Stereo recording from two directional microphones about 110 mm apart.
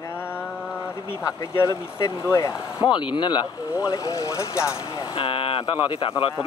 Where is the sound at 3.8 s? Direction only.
30° left (ahead or behind).